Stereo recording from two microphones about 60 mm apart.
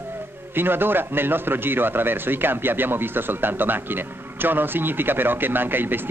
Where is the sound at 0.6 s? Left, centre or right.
Right.